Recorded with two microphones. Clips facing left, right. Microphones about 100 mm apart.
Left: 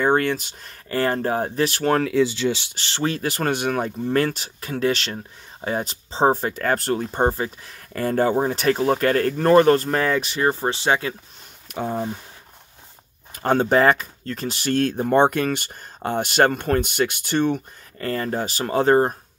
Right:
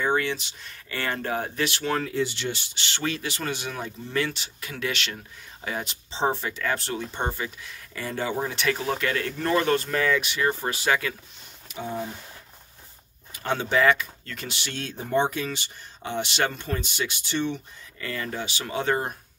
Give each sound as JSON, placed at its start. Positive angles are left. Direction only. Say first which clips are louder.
{"t": 0.0, "sound": "speech", "louder": "left 6 dB", "side_deg": 50}
{"t": 1.9, "sound": "speech", "louder": "left 9 dB", "side_deg": 75}
{"t": 2.7, "sound": "speech", "louder": "left 5 dB", "side_deg": 35}
{"t": 11.7, "sound": "speech", "louder": "left 6 dB", "side_deg": 50}
{"t": 13.3, "sound": "speech", "louder": "left 7 dB", "side_deg": 45}